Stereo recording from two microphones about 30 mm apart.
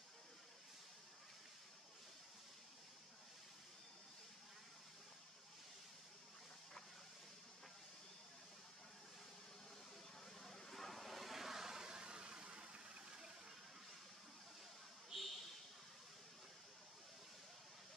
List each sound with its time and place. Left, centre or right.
10.4 s vehicle: centre
11.6 s vehicle: centre
11.9 s vehicle: right
15.1 s a sound: centre